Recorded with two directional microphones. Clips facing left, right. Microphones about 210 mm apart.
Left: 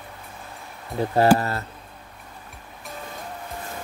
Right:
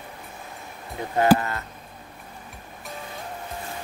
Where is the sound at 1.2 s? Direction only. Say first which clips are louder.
Left 1 dB; 35° left (ahead or behind).